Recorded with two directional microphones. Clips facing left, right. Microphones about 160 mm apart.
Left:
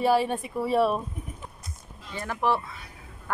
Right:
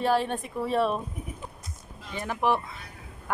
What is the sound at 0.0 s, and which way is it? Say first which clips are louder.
Speech: left 2 dB; 10° left (ahead or behind).